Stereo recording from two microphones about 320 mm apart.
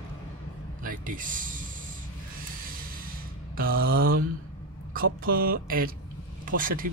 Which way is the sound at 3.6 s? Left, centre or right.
Right.